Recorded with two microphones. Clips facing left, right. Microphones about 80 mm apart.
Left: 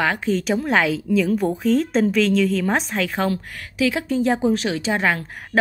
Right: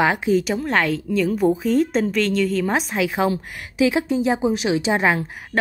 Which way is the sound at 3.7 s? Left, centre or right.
Right.